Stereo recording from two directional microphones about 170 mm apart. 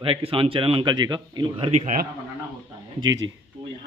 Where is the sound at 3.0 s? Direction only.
25° right (ahead or behind).